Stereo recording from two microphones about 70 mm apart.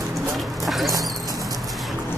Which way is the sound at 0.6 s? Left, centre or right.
Centre.